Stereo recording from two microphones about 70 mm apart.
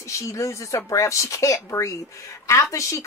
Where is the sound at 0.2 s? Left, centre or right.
Left.